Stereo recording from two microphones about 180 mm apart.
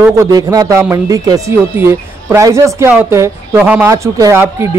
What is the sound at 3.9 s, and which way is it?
Speech, 20° right (ahead or behind).